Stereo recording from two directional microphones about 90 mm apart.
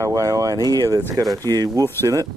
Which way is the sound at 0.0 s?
40° right (ahead or behind).